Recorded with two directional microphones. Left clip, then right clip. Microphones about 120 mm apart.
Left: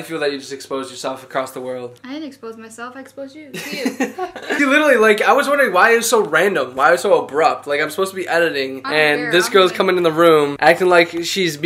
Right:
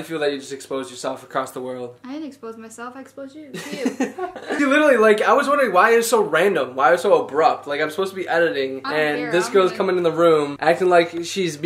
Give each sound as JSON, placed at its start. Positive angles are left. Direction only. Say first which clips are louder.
{"t": 0.1, "sound": "speech", "louder": "left 2 dB", "side_deg": 5}
{"t": 9.3, "sound": "speech", "louder": "left 4 dB", "side_deg": 20}